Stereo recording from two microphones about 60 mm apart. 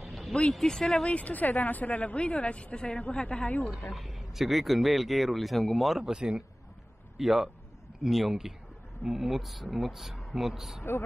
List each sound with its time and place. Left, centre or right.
0.0 s a sound: centre
0.3 s speech: centre
1.1 s a woman's voice: left
3.7 s a man's voice: centre